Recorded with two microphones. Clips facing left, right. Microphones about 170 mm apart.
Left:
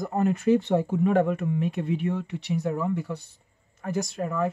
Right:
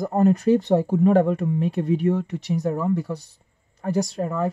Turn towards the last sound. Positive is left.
turn(degrees=-35)  # may be behind; listen again after turning